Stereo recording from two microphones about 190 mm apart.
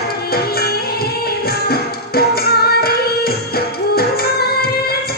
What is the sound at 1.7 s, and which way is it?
Music, 55° left (ahead or behind).